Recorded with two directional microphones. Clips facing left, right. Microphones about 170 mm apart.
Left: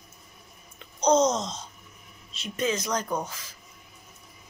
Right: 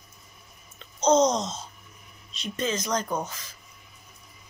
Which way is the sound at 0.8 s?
10° left (ahead or behind).